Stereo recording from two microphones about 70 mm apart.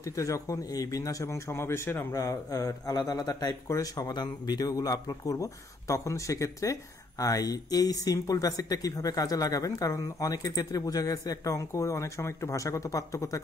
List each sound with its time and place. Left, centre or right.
0.0 s a man's voice: left
3.6 s speech: left
4.1 s speech: left